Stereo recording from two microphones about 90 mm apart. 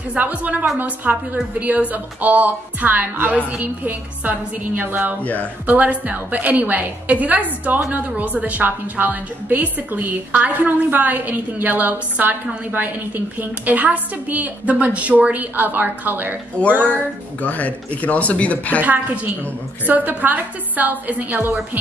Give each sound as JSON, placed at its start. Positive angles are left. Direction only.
{"t": 0.1, "sound": "a woman's voice", "side_deg": -15}
{"t": 5.2, "sound": "speech", "side_deg": 15}
{"t": 5.7, "sound": "a woman's voice", "side_deg": -15}
{"t": 16.6, "sound": "speech", "side_deg": 15}
{"t": 19.9, "sound": "a woman's voice", "side_deg": -20}